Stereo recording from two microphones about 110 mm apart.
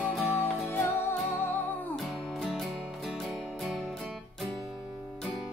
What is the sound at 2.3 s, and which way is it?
Music, centre (ahead or behind).